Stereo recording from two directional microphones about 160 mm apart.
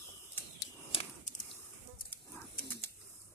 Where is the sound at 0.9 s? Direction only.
35° left (ahead or behind).